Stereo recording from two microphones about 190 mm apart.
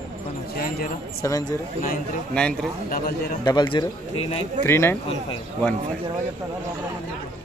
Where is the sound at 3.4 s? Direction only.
20° left (ahead or behind).